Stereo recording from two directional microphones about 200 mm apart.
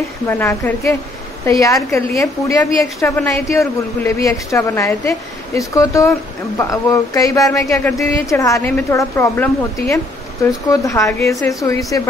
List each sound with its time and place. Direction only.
0.3 s a man's voice: 10° left (ahead or behind)